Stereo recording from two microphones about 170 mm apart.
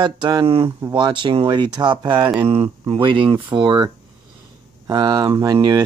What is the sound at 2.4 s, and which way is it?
Speech, 35° right (ahead or behind).